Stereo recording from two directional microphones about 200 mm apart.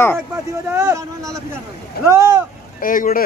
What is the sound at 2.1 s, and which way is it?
Speech, 15° right (ahead or behind).